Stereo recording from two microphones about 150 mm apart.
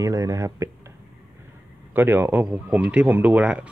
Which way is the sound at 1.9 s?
15° right (ahead or behind).